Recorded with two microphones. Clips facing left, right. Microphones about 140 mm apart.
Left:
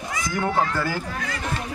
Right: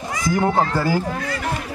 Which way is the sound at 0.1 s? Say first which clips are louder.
Right 5 dB; 35° right (ahead or behind).